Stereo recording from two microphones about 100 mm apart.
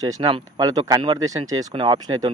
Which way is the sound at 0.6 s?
40° right (ahead or behind).